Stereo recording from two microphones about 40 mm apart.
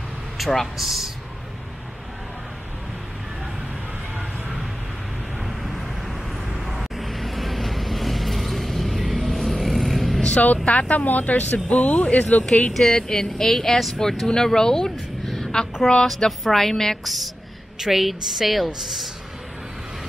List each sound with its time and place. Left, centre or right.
0.4 s speech: centre
0.7 s speech: centre
5.5 s vehicle: centre
10.3 s speech: left
12.7 s a woman's voice: centre